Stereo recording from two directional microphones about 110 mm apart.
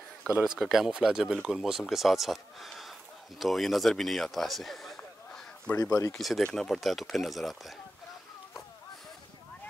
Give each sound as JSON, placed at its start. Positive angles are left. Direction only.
{"t": 0.6, "sound": "speech", "side_deg": 0}
{"t": 5.8, "sound": "speech", "side_deg": 35}
{"t": 6.1, "sound": "speech", "side_deg": 0}